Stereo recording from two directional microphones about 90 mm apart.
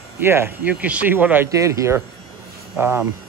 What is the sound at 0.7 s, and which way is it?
Speech, 15° right (ahead or behind).